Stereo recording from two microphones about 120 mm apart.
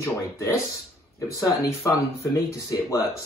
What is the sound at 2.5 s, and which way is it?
Speech, 25° left (ahead or behind).